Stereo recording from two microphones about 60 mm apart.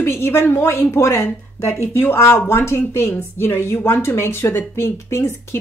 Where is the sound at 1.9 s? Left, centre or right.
Left.